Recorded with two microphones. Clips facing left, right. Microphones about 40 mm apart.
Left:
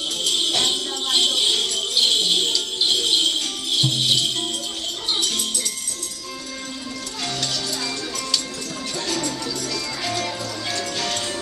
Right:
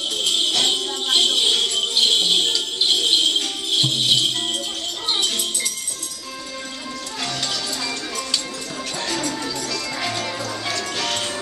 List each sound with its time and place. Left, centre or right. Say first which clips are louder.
0.6 s jingle bell: right 2 dB; centre
1.8 s music: right 2 dB; centre
7.2 s music: even; centre